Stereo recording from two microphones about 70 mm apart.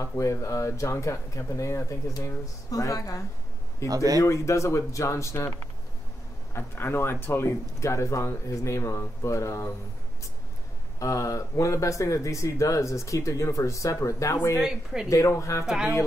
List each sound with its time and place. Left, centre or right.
0.0 s speech: left
3.8 s speech: right
4.2 s speech: left
6.5 s speech: left
11.0 s speech: left
14.6 s a woman's voice: centre
15.0 s speech: left
15.6 s a woman's voice: centre